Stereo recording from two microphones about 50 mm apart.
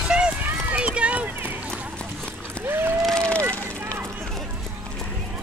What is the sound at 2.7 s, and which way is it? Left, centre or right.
Speech, right.